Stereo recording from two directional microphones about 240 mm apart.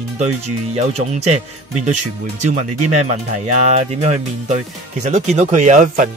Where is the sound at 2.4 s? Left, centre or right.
Right.